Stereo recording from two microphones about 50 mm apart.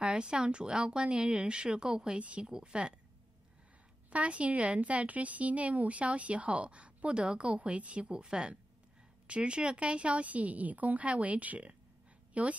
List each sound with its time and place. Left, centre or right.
0.0 s a woman's voice: centre
4.1 s speech: right